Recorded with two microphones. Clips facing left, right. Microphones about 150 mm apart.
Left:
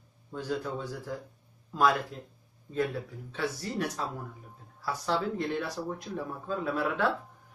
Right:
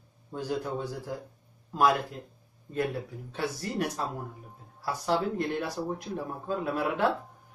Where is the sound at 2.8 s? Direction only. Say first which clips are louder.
Even; 45° right (ahead or behind).